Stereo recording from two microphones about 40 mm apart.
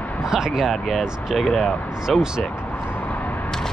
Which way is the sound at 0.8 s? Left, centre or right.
Centre.